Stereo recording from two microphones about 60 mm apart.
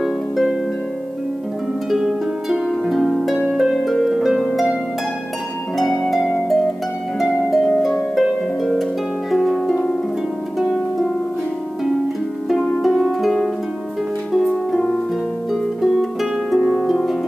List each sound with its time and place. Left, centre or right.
0.0 s harp: centre
1.9 s harp: centre
5.8 s harp: centre
12.8 s harp: centre
15.8 s harp: centre